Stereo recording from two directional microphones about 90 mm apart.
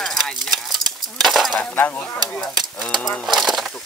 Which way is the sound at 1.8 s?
20° left (ahead or behind).